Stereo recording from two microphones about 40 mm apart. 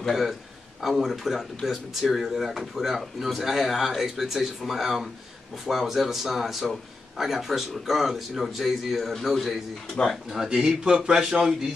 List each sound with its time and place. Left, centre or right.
0.1 s speech: centre
10.3 s speech: centre